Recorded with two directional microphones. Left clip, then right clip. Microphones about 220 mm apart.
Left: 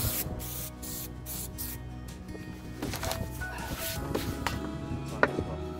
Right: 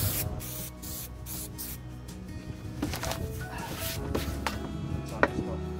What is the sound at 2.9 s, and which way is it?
Music, 20° left (ahead or behind).